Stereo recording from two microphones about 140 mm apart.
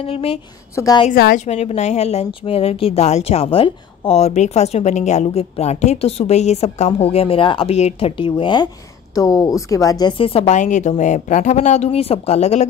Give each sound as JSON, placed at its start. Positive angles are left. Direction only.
{"t": 0.0, "sound": "a woman's voice", "side_deg": 45}
{"t": 0.7, "sound": "a woman's voice", "side_deg": 25}
{"t": 1.1, "sound": "a woman's voice", "side_deg": 90}
{"t": 1.4, "sound": "a woman's voice", "side_deg": 50}
{"t": 8.2, "sound": "speech", "side_deg": 35}
{"t": 9.1, "sound": "a woman's voice", "side_deg": 25}
{"t": 10.1, "sound": "a woman's voice", "side_deg": 40}